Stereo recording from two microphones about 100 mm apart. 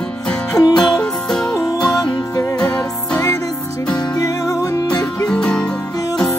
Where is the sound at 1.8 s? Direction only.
40° left (ahead or behind).